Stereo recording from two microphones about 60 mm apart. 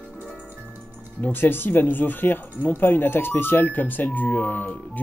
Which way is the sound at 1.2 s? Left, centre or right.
Left.